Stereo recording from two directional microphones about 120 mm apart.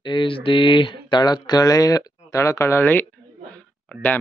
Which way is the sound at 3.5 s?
10° left (ahead or behind).